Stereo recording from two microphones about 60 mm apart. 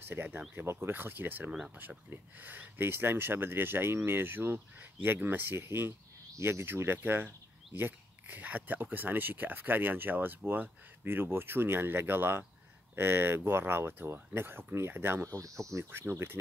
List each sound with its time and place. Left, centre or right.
0.1 s speech: right
15.3 s speech: right
15.9 s speech: right